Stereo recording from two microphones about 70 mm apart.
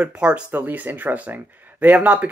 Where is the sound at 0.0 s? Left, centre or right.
Centre.